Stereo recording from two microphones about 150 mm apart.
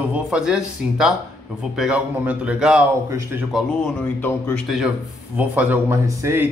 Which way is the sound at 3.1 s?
15° right (ahead or behind).